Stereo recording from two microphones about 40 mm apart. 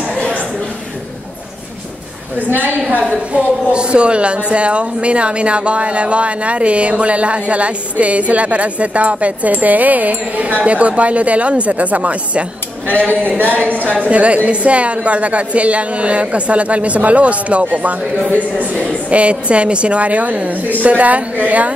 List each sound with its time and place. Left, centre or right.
3.1 s a woman's voice: right
13.0 s a woman's voice: right
19.0 s a woman's voice: right